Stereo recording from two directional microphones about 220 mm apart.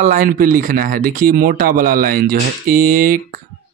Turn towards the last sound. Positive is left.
turn(degrees=-40)  # may be behind; listen again after turning